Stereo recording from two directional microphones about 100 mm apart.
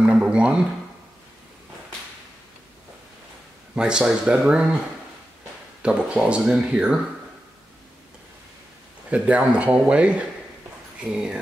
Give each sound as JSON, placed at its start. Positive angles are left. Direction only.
{"t": 0.0, "sound": "a sound", "side_deg": -10}
{"t": 3.7, "sound": "speech", "side_deg": -10}
{"t": 5.8, "sound": "speech", "side_deg": -10}
{"t": 9.1, "sound": "speech", "side_deg": -10}